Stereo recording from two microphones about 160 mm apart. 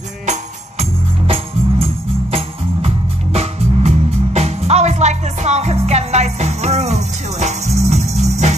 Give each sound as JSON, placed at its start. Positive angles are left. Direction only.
{"t": 0.3, "sound": "music", "side_deg": -40}
{"t": 3.3, "sound": "music", "side_deg": -45}